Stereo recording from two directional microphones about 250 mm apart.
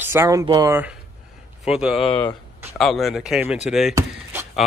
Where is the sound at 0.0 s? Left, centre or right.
Centre.